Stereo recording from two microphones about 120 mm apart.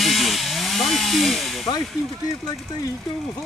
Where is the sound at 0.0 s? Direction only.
Centre (ahead or behind).